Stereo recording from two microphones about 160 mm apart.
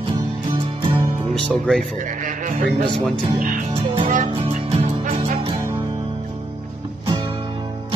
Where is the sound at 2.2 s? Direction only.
55° right (ahead or behind).